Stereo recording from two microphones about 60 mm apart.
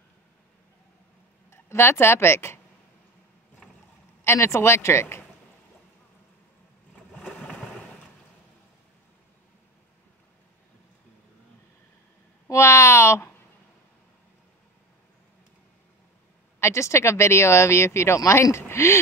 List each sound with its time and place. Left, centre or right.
1.5 s a woman's voice: left
4.2 s speech: left
12.4 s a sound: left
16.5 s speech: left